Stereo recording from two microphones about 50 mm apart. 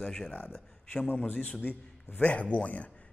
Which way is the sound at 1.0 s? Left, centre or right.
Left.